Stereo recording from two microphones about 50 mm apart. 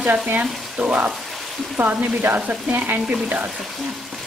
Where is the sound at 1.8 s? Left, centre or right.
Right.